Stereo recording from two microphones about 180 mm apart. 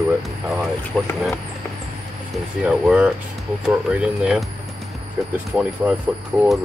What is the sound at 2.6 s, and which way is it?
Speech, 5° right (ahead or behind).